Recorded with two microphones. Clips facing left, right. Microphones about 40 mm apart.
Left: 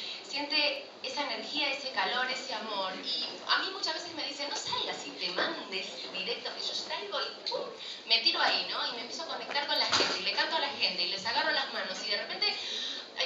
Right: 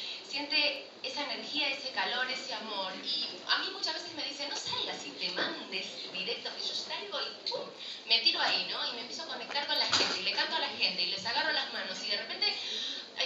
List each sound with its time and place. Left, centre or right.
0.4 s a woman's voice: centre